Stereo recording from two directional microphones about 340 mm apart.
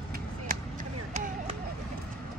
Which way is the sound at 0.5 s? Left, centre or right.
Right.